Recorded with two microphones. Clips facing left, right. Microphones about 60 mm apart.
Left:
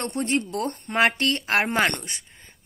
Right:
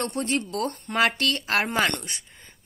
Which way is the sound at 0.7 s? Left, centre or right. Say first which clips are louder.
Left 2 dB; left.